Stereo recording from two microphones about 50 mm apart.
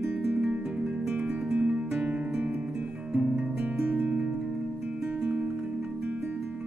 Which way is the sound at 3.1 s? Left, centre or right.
Right.